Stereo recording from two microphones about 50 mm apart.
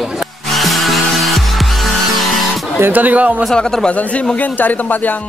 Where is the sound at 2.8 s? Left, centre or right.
Right.